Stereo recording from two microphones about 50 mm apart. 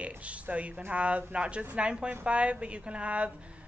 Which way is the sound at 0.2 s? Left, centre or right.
Right.